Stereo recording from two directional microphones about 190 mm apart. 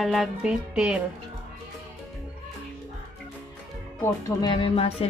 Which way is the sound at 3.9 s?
20° left (ahead or behind).